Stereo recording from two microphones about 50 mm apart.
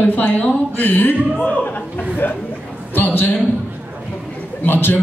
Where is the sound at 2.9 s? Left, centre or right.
Left.